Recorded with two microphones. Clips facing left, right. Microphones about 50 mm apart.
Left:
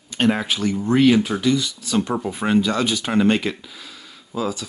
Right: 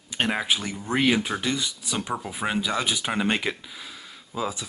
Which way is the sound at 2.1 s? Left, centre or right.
Centre.